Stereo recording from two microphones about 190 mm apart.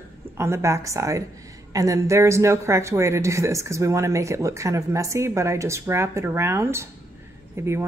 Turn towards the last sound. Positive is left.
turn(degrees=-15)  # may be behind; listen again after turning